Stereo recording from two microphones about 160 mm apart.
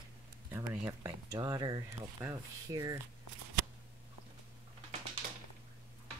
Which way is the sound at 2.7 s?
20° right (ahead or behind).